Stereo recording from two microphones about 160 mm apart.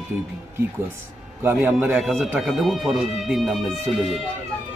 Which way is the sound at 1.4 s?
15° right (ahead or behind).